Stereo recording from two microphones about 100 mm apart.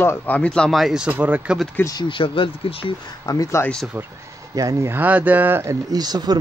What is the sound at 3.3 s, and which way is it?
Speech, 35° left (ahead or behind).